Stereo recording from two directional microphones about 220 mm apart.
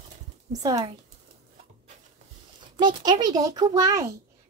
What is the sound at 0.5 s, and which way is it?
Speech, 15° right (ahead or behind).